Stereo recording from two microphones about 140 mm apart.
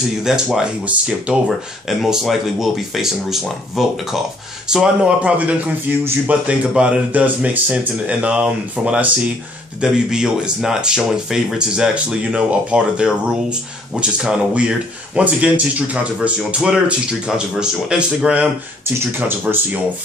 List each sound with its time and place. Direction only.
0.2 s speech: 5° right (ahead or behind)